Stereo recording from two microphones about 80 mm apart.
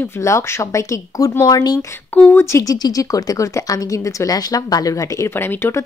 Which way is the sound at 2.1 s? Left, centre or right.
Left.